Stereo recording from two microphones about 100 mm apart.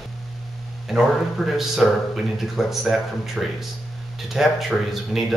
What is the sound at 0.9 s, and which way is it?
A man's voice, centre (ahead or behind).